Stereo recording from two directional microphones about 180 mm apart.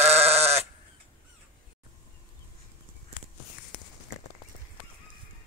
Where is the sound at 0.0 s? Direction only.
35° right (ahead or behind).